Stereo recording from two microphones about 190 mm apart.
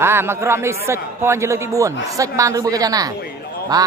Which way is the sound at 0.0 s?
15° right (ahead or behind).